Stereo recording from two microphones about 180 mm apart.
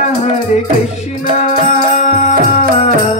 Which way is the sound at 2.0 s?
35° left (ahead or behind).